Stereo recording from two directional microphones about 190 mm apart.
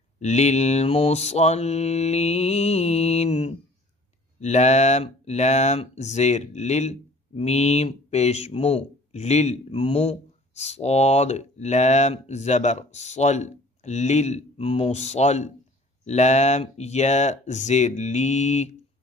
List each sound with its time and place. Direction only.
0.2 s speech: 35° left (ahead or behind)